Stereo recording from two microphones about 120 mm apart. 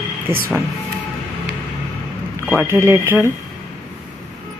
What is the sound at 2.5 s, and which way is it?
Speech, 20° right (ahead or behind).